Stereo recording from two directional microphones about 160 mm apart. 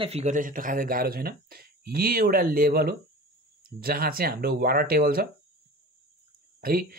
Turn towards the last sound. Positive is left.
turn(degrees=-70)  # may be behind; listen again after turning